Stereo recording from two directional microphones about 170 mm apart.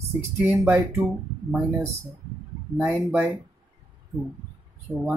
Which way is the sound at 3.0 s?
10° right (ahead or behind).